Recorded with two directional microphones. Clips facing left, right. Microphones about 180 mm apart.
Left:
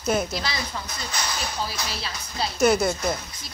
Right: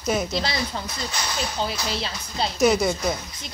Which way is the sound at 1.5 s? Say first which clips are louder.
Right 4 dB; 25° right (ahead or behind).